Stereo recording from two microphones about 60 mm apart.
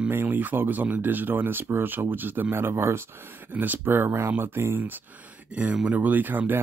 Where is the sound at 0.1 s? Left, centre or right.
Right.